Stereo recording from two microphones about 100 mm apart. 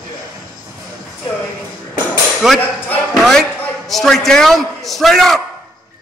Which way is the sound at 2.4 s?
5° right (ahead or behind).